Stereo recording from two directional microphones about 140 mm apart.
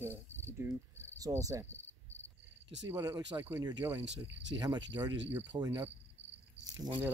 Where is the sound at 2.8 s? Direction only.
25° right (ahead or behind).